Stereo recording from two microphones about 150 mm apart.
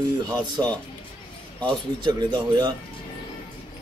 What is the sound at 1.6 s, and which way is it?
Speech, 30° right (ahead or behind).